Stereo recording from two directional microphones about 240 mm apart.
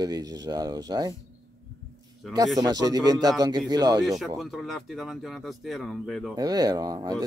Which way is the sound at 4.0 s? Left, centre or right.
Centre.